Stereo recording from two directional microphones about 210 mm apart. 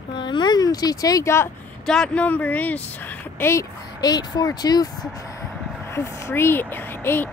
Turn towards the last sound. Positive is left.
turn(degrees=10)  # may be behind; listen again after turning